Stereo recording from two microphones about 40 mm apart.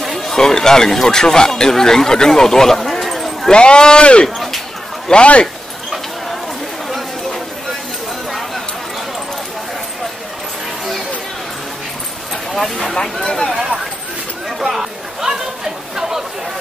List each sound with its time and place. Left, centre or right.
0.0 s speech: centre
3.4 s speech: left
12.5 s speech: centre
12.9 s speech: centre
14.6 s chatter: centre